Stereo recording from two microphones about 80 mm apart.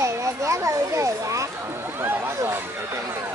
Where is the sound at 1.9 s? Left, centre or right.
Right.